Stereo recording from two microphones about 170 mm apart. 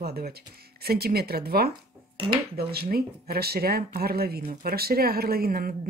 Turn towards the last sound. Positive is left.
turn(degrees=-60)  # may be behind; listen again after turning